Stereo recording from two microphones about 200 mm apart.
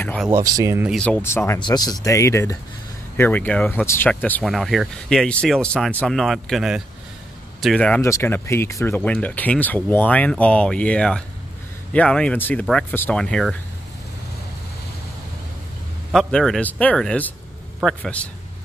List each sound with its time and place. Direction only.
0.0 s a sound: 5° left (ahead or behind)
0.3 s speech: 20° right (ahead or behind)
0.9 s speech: 5° left (ahead or behind)
16.1 s speech: centre (ahead or behind)